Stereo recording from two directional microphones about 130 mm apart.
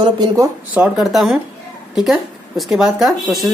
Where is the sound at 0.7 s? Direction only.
5° right (ahead or behind).